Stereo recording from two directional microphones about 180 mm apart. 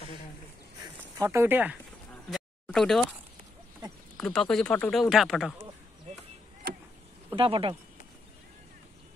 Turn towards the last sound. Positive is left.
turn(degrees=-30)  # may be behind; listen again after turning